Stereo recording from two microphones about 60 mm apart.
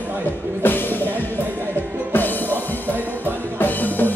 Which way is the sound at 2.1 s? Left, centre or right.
Left.